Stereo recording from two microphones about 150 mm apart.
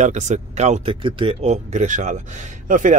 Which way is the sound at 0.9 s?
35° right (ahead or behind).